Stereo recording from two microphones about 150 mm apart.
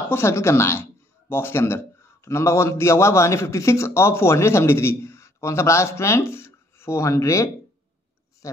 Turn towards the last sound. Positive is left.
turn(degrees=20)  # may be behind; listen again after turning